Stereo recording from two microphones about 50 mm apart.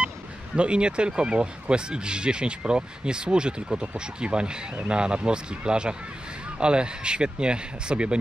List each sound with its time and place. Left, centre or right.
0.6 s speech: right